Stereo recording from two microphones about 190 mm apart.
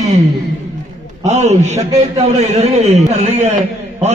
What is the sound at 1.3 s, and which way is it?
A man's voice, 35° right (ahead or behind).